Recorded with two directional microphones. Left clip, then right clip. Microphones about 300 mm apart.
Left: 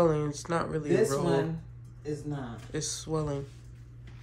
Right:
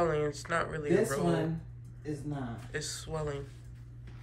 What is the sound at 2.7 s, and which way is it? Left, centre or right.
Speech, centre.